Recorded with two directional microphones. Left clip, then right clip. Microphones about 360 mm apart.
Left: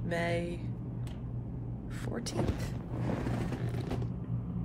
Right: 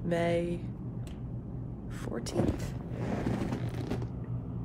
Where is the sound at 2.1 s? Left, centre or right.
Centre.